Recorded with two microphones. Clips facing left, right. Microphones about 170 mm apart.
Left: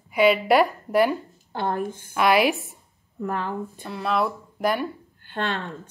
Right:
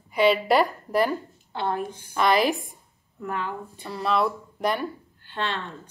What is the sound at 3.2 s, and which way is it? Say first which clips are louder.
Speech: left 3 dB; 40° left (ahead or behind).